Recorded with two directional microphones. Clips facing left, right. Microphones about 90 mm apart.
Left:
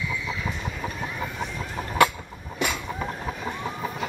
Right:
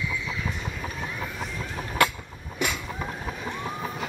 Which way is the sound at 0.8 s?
Centre (ahead or behind).